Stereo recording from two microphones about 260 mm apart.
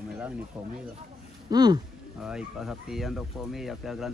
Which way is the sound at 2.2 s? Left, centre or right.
Centre.